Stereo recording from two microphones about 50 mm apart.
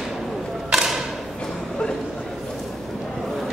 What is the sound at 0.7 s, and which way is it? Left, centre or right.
Mechanisms, centre.